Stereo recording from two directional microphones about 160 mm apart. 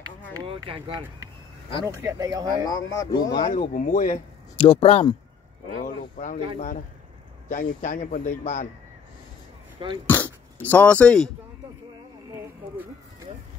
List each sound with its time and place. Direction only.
0.5 s speech: 35° right (ahead or behind)
1.9 s speech: 20° right (ahead or behind)
2.6 s speech: 25° left (ahead or behind)
3.4 s a man's voice: 55° left (ahead or behind)
4.6 s speech: 35° left (ahead or behind)
6.1 s a man's voice: 50° left (ahead or behind)
10.0 s speech: 10° left (ahead or behind)